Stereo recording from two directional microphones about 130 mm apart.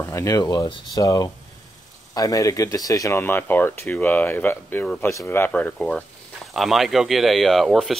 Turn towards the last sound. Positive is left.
turn(degrees=0)  # may be behind; listen again after turning